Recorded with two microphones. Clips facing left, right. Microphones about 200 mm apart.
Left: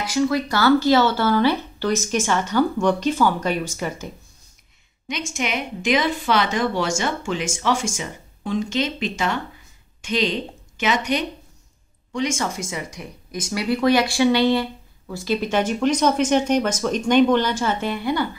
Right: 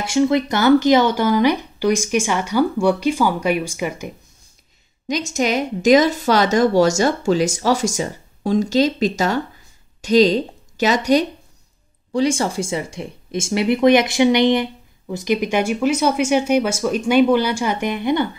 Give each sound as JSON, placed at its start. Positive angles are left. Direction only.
{"t": 0.0, "sound": "speech", "side_deg": -25}
{"t": 5.0, "sound": "a woman's voice", "side_deg": -40}